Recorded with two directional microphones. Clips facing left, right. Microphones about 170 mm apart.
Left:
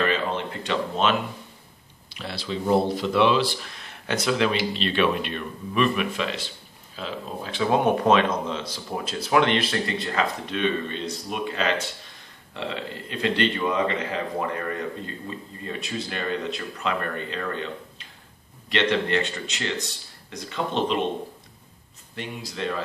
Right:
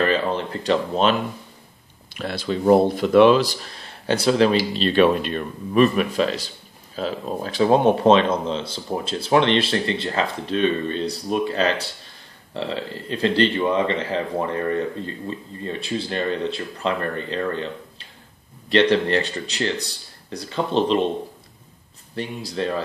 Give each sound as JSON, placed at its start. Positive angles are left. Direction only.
{"t": 0.1, "sound": "a sound", "side_deg": -35}
{"t": 2.1, "sound": "a man's voice", "side_deg": -50}
{"t": 22.1, "sound": "a man's voice", "side_deg": -35}